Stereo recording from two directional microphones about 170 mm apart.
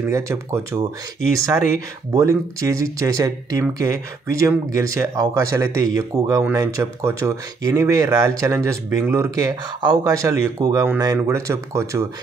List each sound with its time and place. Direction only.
0.0 s speech: 15° right (ahead or behind)
2.1 s speech: 20° right (ahead or behind)